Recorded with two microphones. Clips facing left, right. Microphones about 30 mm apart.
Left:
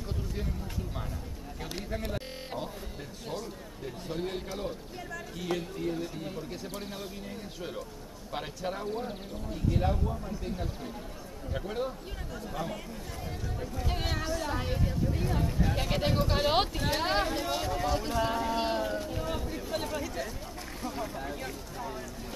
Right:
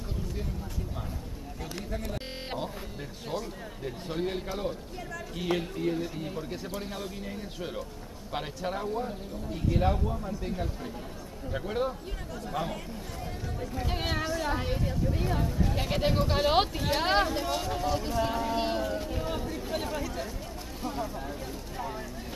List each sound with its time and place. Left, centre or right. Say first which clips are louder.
3.3 s speech: right 3 dB; centre
5.4 s speech: right 4 dB; right
5.9 s speech: right 2 dB; centre
13.7 s speech: right 3 dB; centre
15.4 s speech: even; centre
17.0 s speech: right 4 dB; centre
17.7 s speech: even; centre
18.9 s a sound: right 1 dB; centre
21.0 s speech: right 1 dB; centre
21.7 s boat: right 4 dB; centre